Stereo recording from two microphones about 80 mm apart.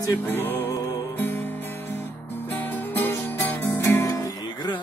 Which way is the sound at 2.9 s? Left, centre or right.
Left.